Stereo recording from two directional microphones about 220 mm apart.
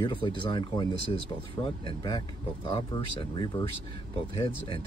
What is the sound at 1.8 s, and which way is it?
Speech, 20° left (ahead or behind).